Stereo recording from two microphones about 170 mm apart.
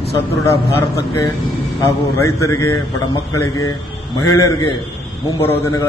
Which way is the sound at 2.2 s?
20° left (ahead or behind).